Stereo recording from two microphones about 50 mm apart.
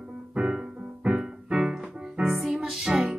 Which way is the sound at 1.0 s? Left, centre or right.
Right.